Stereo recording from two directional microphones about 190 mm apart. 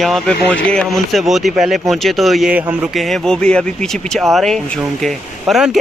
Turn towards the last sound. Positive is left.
turn(degrees=0)  # may be behind; listen again after turning